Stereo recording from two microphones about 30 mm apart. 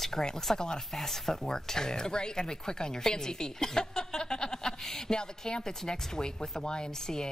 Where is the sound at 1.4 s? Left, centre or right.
Left.